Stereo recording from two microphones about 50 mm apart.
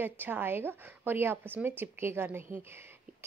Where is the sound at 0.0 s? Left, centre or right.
Right.